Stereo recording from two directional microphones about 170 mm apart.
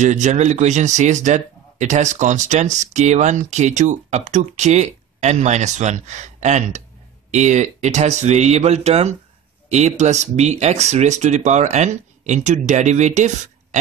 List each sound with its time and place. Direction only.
0.0 s speech: 45° right (ahead or behind)